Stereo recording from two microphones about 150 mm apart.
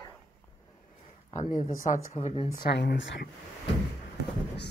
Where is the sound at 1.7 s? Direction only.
65° left (ahead or behind).